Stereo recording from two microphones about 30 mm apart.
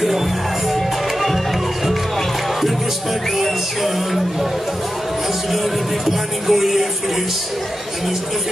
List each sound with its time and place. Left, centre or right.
6.0 s music: centre